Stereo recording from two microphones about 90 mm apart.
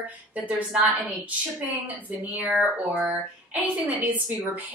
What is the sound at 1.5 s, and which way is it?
Speech, 20° right (ahead or behind).